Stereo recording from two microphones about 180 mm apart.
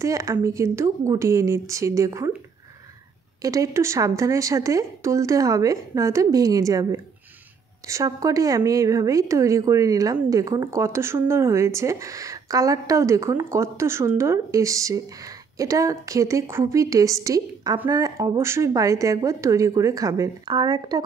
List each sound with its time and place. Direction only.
0.0 s a woman's voice: 20° right (ahead or behind)
3.4 s a woman's voice: 20° right (ahead or behind)